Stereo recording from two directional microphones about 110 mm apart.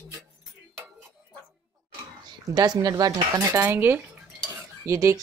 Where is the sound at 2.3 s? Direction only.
40° right (ahead or behind).